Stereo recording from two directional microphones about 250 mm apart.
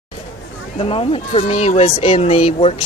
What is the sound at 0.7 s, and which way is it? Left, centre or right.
Speech, left.